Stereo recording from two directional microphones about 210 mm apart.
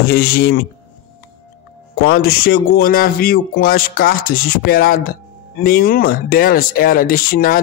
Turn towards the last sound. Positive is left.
turn(degrees=45)  # may be behind; listen again after turning